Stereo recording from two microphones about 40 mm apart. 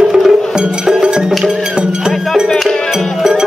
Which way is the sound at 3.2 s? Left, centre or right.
Centre.